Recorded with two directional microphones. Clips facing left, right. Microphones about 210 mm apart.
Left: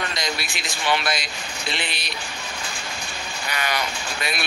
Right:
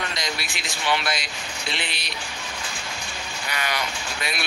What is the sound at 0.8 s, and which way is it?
Speech, 45° left (ahead or behind).